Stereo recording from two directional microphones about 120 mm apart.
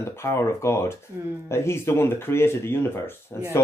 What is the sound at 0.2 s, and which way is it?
Speech, 20° left (ahead or behind).